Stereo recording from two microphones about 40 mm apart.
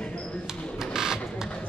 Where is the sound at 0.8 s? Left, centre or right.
Centre.